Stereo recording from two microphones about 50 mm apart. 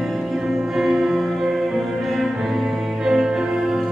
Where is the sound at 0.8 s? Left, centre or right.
Centre.